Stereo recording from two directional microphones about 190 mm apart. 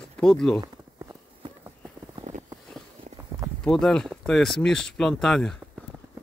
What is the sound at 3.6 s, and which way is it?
Speech, 5° left (ahead or behind).